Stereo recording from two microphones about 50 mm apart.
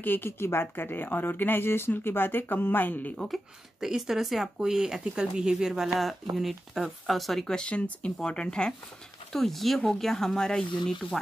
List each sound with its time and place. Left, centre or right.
0.0 s speech: left
3.8 s speech: centre
7.4 s speech: centre
9.3 s speech: centre